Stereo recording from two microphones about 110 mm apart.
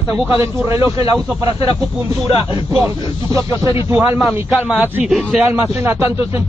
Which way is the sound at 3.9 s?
20° right (ahead or behind).